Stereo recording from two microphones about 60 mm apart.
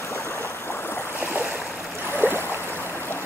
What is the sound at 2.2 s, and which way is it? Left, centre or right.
Boat, left.